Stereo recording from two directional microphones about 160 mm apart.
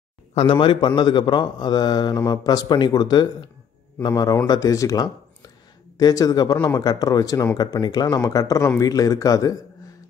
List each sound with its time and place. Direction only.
0.3 s speech: 35° left (ahead or behind); by 9.6 s 20° left (ahead or behind)